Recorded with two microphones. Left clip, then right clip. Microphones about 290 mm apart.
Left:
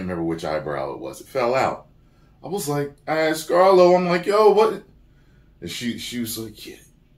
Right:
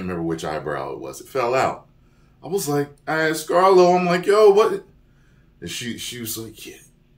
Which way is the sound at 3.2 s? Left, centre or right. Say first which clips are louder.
Even; centre.